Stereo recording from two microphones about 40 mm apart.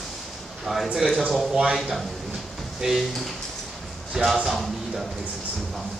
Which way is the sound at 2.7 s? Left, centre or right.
Centre.